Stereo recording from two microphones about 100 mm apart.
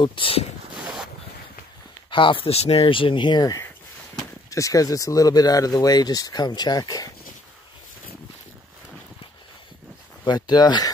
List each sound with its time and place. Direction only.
0.0 s speech: 60° left (ahead or behind)
2.0 s speech: 55° left (ahead or behind)
4.5 s speech: 35° left (ahead or behind)
10.2 s speech: 45° left (ahead or behind)